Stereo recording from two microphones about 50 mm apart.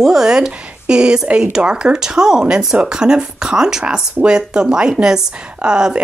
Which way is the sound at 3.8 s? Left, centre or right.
Right.